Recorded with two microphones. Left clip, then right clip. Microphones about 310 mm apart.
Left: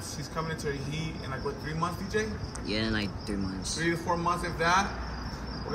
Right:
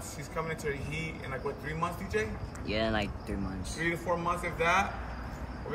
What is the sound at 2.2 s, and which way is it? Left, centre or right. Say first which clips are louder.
Speech: left 2 dB; centre.